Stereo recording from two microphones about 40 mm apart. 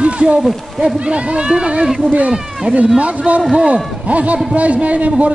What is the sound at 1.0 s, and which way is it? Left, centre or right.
Speech, right.